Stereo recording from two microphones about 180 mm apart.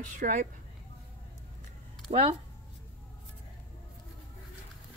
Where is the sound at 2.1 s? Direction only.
35° right (ahead or behind).